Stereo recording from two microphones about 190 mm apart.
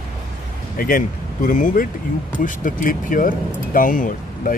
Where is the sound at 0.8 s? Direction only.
45° left (ahead or behind).